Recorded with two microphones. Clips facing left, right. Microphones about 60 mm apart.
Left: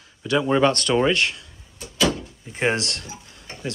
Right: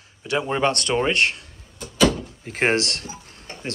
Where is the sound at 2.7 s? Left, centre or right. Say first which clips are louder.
Right 1 dB; right.